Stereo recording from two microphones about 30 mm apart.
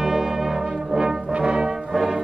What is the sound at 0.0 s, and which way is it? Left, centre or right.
Brass instrument, centre.